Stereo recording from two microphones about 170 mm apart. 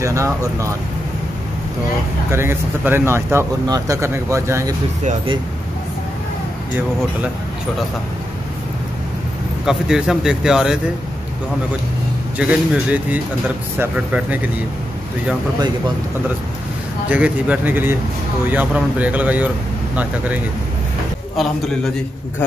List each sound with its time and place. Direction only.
0.0 s speech: 20° right (ahead or behind)
2.3 s speech: 15° right (ahead or behind)
9.7 s a man's voice: 5° right (ahead or behind)
12.4 s speech: 10° right (ahead or behind)
17.1 s speech: 10° right (ahead or behind)